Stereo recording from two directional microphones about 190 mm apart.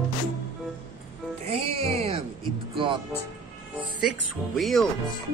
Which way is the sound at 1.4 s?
35° right (ahead or behind).